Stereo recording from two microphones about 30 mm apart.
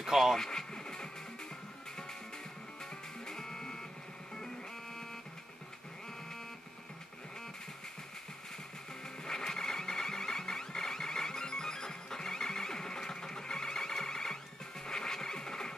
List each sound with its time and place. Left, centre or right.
0.0 s speech: centre
0.4 s vehicle: centre
3.3 s music: centre
9.2 s music: centre
14.9 s scratch: left